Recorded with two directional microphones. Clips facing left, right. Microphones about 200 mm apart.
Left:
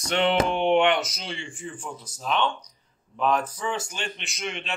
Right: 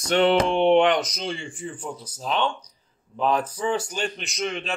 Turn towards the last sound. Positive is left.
turn(degrees=-40)  # may be behind; listen again after turning